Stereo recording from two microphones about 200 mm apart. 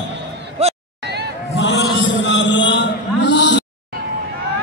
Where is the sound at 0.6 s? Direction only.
30° right (ahead or behind).